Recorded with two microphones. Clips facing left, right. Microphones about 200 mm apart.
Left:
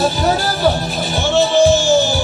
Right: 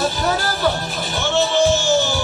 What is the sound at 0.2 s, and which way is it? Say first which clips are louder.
Music: left 4 dB; 35° left (ahead or behind).